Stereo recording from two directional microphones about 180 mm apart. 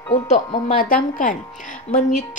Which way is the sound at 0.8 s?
50° left (ahead or behind).